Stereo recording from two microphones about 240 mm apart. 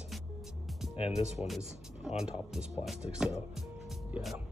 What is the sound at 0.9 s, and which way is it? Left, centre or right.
Speech, centre.